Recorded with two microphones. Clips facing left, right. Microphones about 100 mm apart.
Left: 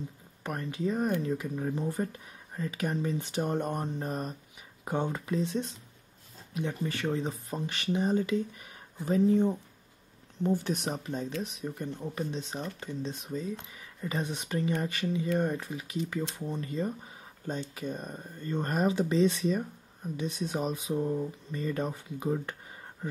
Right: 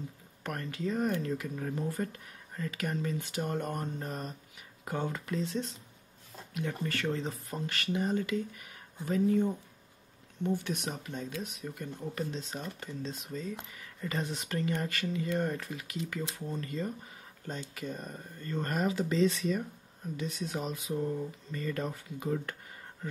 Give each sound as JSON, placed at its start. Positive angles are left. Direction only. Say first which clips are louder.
{"t": 0.4, "sound": "speech", "louder": "left 3 dB", "side_deg": 15}